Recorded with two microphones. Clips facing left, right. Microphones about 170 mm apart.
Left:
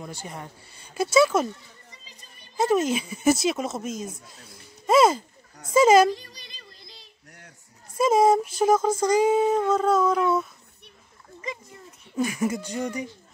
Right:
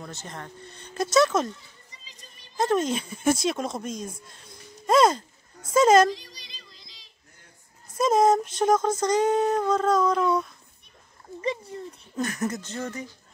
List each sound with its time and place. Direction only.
0.0 s speech: 10° left (ahead or behind)
1.9 s children playing: 55° left (ahead or behind)
2.5 s speech: 5° left (ahead or behind)
6.1 s a sound: 55° left (ahead or behind)
8.0 s speech: 5° left (ahead or behind)
11.4 s a sound: 30° right (ahead or behind)
12.2 s speech: 10° left (ahead or behind)